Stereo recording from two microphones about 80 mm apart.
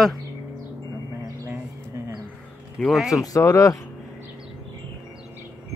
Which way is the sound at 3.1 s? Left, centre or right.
Left.